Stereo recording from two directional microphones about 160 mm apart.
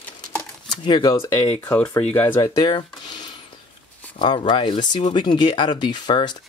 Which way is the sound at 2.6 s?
25° left (ahead or behind).